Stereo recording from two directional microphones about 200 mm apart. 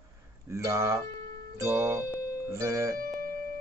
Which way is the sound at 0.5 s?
15° right (ahead or behind).